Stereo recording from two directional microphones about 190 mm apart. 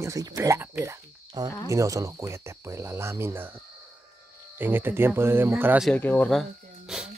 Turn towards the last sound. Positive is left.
turn(degrees=0)  # may be behind; listen again after turning